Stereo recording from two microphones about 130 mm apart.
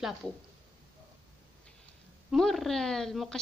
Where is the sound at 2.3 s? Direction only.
Centre (ahead or behind).